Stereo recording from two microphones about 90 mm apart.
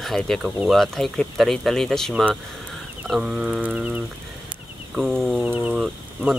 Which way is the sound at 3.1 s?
10° right (ahead or behind).